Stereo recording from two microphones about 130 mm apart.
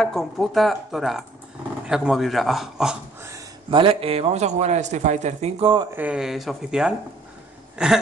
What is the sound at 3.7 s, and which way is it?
Speech, 45° right (ahead or behind).